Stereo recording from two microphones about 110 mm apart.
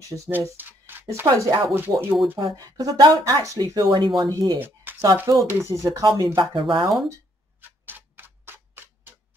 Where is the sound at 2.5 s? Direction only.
35° right (ahead or behind).